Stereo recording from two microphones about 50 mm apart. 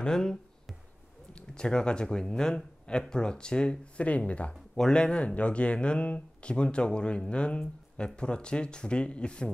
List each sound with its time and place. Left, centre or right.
0.0 s speech: centre
1.5 s speech: centre